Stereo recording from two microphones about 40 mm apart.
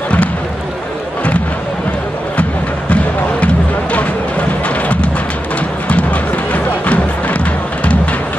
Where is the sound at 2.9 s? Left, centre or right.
Left.